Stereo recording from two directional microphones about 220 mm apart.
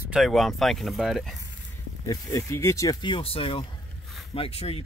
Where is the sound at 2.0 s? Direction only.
15° left (ahead or behind).